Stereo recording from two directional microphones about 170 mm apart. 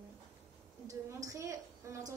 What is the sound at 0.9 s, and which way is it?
A woman's voice, 20° right (ahead or behind).